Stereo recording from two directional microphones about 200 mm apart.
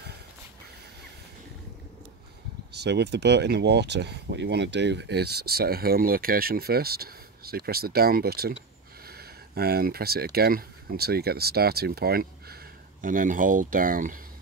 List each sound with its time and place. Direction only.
2.7 s speech: 55° right (ahead or behind)